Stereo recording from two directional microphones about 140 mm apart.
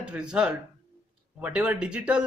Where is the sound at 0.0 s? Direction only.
5° right (ahead or behind).